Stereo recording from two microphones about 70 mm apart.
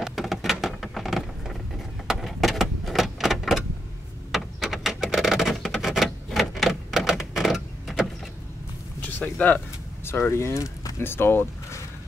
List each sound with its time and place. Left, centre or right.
0.0 s a sound: centre
2.0 s vehicle: centre
4.3 s a sound: centre
9.0 s speech: left
10.0 s speech: left
11.0 s speech: left